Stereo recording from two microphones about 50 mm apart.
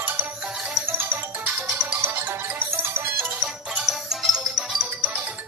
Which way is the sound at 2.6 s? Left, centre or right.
Right.